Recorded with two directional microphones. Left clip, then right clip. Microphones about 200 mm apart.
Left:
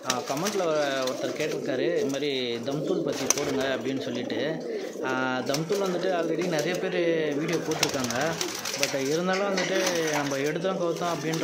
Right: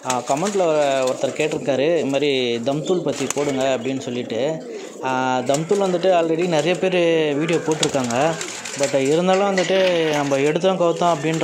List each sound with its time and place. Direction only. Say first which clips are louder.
0.6 s speech: right 8 dB; 25° right (ahead or behind)
5.0 s speech: right 9 dB; 30° right (ahead or behind)
9.1 s speech: right 9 dB; 30° right (ahead or behind)